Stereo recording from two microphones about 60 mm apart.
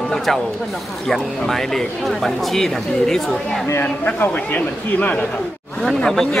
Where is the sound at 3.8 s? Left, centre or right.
Left.